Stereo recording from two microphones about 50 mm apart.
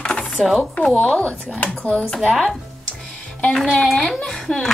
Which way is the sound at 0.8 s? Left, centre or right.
Centre.